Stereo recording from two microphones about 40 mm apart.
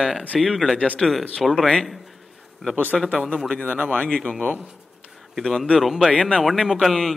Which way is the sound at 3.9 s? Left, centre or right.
Left.